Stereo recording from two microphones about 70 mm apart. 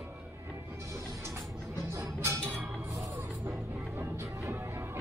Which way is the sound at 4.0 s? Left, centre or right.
Right.